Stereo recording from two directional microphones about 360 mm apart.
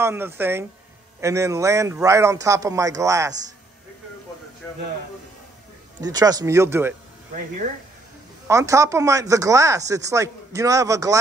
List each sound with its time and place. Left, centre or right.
0.0 s speech: centre
5.9 s speech: centre
7.3 s speech: right
8.5 s speech: centre